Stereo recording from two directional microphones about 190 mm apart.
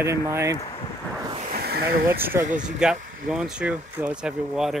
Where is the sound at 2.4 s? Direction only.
40° right (ahead or behind).